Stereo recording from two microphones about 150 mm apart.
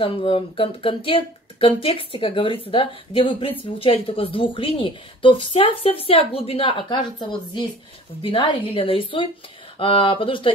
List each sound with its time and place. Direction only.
0.0 s speech: 35° left (ahead or behind)